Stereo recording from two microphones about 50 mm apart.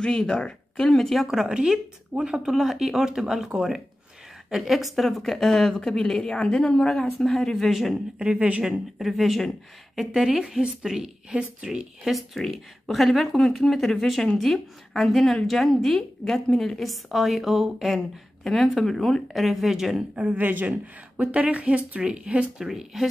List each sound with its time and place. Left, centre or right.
0.0 s a woman's voice: centre
1.2 s a woman's voice: centre
8.2 s speech: right
8.6 s speech: centre
9.9 s speech: centre
12.0 s speech: centre
20.2 s speech: right
20.4 s speech: right
22.6 s speech: centre